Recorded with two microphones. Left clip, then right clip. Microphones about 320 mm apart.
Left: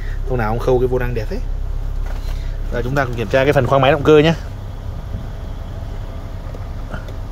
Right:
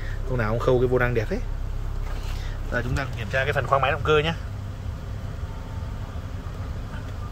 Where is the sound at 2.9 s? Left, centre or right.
Centre.